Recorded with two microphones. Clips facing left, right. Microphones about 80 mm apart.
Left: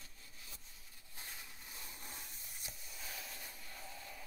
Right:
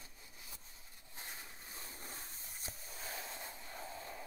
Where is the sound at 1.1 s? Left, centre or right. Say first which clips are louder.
Right 2 dB; right.